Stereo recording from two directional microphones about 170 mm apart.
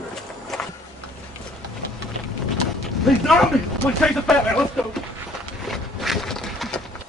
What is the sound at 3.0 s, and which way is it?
Speech, centre (ahead or behind).